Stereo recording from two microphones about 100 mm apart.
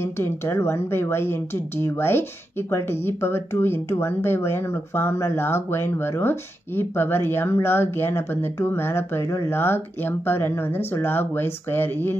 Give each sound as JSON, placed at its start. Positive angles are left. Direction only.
{"t": 0.0, "sound": "speech", "side_deg": 25}